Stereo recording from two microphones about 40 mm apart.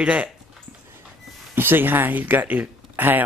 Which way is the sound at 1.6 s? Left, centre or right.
Right.